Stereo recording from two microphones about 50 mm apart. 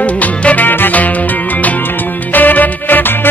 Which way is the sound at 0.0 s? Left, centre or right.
Left.